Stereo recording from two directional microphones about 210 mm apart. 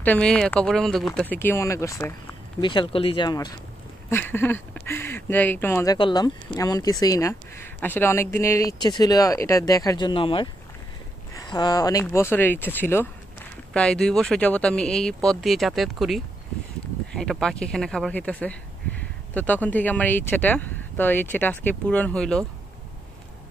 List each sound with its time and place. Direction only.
0.0 s speech: 5° left (ahead or behind)